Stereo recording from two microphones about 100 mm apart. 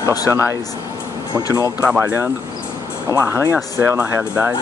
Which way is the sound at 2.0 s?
25° right (ahead or behind).